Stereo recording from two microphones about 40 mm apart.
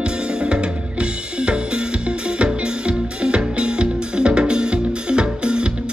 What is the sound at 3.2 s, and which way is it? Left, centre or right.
Music, right.